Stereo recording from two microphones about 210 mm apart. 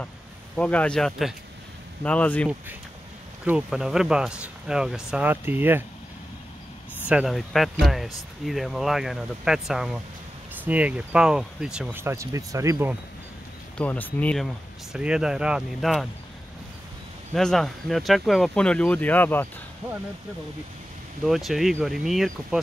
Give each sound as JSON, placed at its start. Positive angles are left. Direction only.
{"t": 0.6, "sound": "speech", "side_deg": 5}
{"t": 3.4, "sound": "speech", "side_deg": -5}
{"t": 7.1, "sound": "speech", "side_deg": 0}
{"t": 13.7, "sound": "speech", "side_deg": 10}
{"t": 17.3, "sound": "speech", "side_deg": 0}
{"t": 21.2, "sound": "speech", "side_deg": 0}